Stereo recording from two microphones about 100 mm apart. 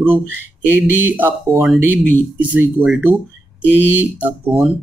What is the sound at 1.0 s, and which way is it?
Speech, 20° right (ahead or behind).